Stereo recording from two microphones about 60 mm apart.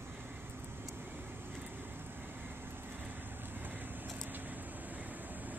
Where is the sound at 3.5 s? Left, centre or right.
Right.